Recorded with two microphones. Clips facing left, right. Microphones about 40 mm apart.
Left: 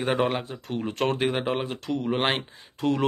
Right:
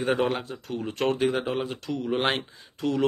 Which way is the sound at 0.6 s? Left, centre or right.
Left.